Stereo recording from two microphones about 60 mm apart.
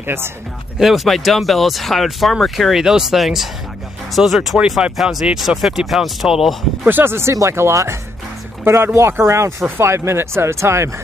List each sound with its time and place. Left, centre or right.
0.0 s speech: right
0.7 s speech: centre
6.9 s speech: right